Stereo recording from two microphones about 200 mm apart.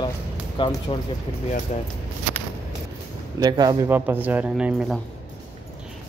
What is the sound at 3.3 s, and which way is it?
Speech, 20° right (ahead or behind).